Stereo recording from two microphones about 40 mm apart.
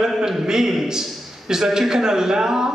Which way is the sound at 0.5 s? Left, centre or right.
Centre.